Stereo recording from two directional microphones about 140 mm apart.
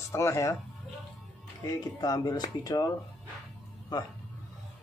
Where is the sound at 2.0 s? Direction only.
25° left (ahead or behind).